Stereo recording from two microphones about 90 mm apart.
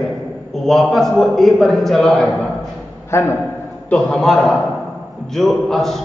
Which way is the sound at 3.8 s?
10° left (ahead or behind).